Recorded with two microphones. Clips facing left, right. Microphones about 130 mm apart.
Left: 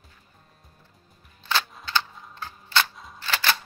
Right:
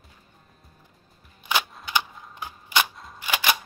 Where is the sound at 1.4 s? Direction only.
15° right (ahead or behind).